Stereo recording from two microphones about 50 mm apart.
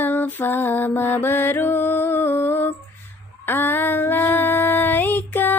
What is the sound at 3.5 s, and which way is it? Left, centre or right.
Female singing, left.